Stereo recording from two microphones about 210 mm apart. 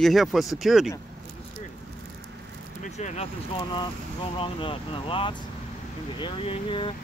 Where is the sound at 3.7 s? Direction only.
25° left (ahead or behind).